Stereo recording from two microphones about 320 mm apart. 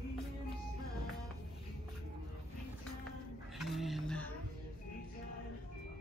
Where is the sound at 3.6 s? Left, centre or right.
Centre.